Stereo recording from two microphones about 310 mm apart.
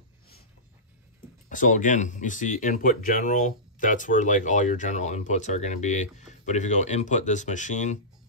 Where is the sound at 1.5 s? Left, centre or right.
Left.